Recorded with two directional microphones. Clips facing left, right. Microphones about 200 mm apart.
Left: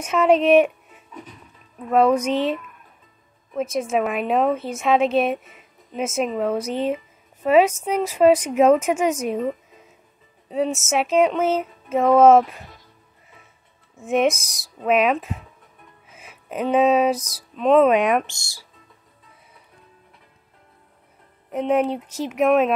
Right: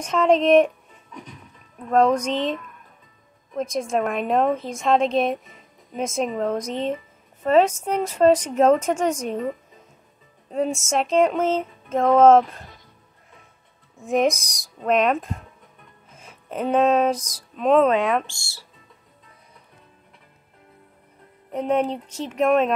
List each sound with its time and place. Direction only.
0.0 s a woman's voice: 5° left (ahead or behind)
10.8 s speech: 5° left (ahead or behind)
13.9 s a woman's voice: centre (ahead or behind)
16.1 s music: 5° left (ahead or behind)
17.3 s speech: 5° left (ahead or behind)
17.8 s speech: 15° left (ahead or behind)
21.5 s speech: 5° left (ahead or behind)